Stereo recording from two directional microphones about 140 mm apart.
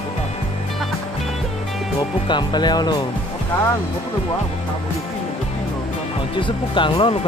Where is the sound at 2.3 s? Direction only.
30° left (ahead or behind).